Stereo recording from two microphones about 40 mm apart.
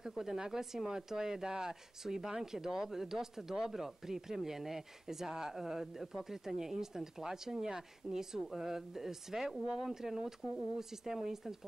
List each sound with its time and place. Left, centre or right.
0.0 s speech: centre